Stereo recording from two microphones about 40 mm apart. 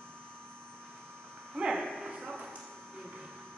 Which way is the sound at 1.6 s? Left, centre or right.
Centre.